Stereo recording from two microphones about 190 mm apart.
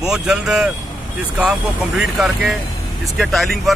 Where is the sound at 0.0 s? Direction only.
5° right (ahead or behind).